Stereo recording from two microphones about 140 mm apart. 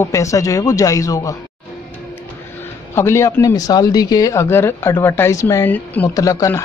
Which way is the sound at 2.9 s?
20° left (ahead or behind).